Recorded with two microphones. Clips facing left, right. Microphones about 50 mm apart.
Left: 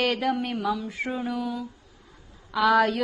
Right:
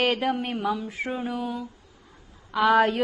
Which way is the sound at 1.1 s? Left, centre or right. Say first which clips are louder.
Even; right.